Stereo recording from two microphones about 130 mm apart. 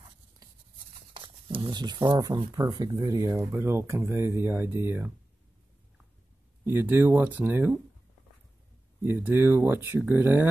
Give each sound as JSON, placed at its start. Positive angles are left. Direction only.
{"t": 1.1, "sound": "speech", "side_deg": -40}
{"t": 6.6, "sound": "speech", "side_deg": -15}
{"t": 9.0, "sound": "speech", "side_deg": -15}